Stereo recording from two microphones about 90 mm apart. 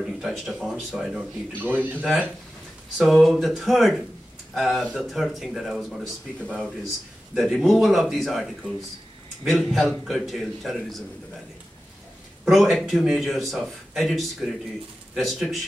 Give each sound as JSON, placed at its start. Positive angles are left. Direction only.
{"t": 0.0, "sound": "speech", "side_deg": -5}
{"t": 1.5, "sound": "a man's voice", "side_deg": -20}
{"t": 3.0, "sound": "speech", "side_deg": 0}
{"t": 12.4, "sound": "speech", "side_deg": 0}